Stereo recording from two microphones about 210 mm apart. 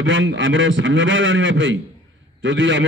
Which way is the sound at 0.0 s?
60° right (ahead or behind).